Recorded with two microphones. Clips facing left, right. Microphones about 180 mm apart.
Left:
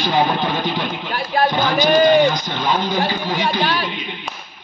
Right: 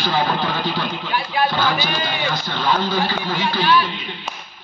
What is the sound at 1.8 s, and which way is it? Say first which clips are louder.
Speech: left 12 dB; 45° left (ahead or behind).